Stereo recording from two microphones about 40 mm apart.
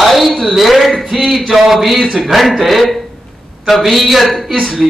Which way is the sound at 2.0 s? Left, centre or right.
Centre.